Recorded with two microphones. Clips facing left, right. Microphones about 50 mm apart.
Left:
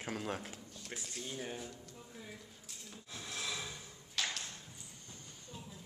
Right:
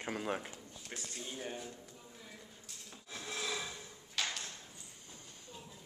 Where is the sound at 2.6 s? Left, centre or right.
Centre.